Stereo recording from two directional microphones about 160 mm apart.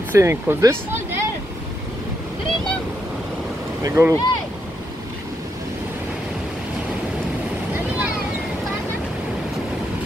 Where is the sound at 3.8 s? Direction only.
20° right (ahead or behind).